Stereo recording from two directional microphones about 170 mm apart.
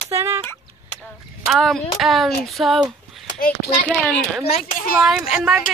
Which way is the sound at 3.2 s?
60° left (ahead or behind).